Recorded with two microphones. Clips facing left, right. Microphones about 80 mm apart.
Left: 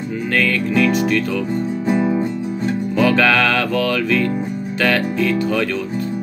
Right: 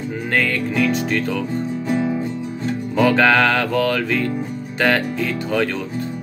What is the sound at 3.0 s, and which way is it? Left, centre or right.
Music, right.